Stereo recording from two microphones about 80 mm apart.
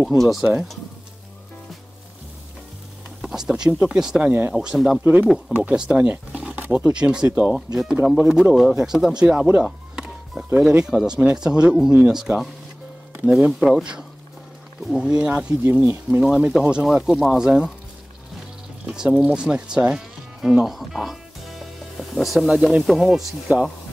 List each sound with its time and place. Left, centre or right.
0.1 s speech: centre
3.2 s speech: centre
4.3 s speech: right
4.6 s speech: centre
5.0 s speech: right
6.3 s wild animals: centre
6.9 s speech: centre
7.5 s speech: centre; by 16.2 s right
16.8 s speech: centre
18.9 s speech: centre